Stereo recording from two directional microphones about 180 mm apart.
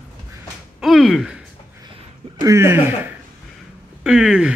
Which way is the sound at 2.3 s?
15° right (ahead or behind).